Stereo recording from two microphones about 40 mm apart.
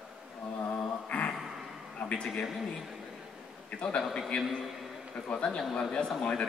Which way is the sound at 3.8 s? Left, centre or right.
Left.